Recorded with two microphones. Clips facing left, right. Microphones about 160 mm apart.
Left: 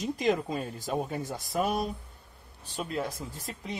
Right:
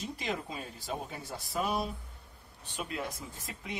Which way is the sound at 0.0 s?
45° left (ahead or behind).